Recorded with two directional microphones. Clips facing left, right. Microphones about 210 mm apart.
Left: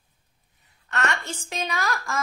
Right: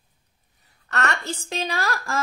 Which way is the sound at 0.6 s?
40° right (ahead or behind).